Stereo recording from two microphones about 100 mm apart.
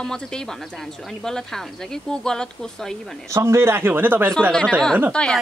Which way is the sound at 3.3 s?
30° right (ahead or behind).